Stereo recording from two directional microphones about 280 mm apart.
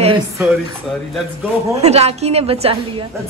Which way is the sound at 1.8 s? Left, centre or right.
Right.